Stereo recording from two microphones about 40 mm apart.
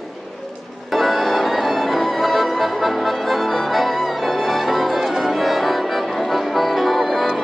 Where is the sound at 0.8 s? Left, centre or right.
Centre.